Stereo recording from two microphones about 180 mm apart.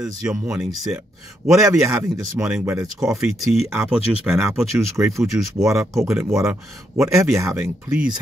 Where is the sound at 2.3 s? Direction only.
5° right (ahead or behind).